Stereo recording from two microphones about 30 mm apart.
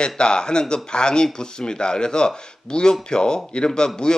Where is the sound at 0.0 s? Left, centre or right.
Left.